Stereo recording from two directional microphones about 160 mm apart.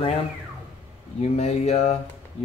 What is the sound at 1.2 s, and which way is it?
Speech, 40° left (ahead or behind).